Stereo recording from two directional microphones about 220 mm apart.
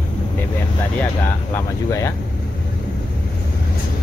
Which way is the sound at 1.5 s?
15° left (ahead or behind).